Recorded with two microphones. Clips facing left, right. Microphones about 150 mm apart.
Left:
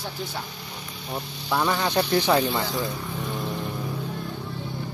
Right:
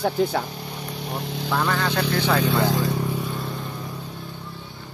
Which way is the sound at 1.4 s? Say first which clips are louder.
Even; 10° left (ahead or behind).